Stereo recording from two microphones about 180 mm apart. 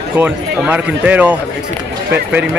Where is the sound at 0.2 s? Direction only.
10° right (ahead or behind).